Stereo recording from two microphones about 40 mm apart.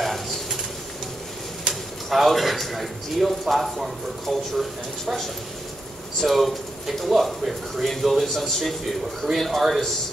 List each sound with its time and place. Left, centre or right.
0.0 s pigeon: centre
1.7 s a man's voice: centre
6.2 s a man's voice: centre